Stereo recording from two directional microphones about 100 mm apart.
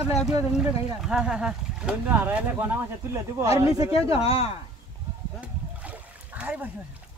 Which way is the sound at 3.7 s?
70° left (ahead or behind).